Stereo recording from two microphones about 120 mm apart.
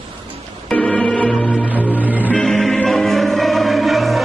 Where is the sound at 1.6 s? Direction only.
15° left (ahead or behind).